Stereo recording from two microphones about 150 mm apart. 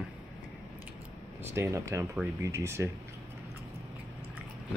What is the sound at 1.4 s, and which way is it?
Speech, 15° right (ahead or behind).